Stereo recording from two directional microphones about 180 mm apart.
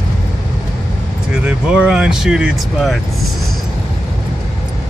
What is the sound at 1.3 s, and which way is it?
Speech, 5° right (ahead or behind).